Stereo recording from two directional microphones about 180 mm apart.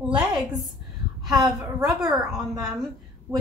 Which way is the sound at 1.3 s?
20° right (ahead or behind).